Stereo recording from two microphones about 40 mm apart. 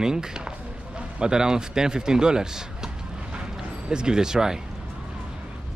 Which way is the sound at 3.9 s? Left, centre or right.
Centre.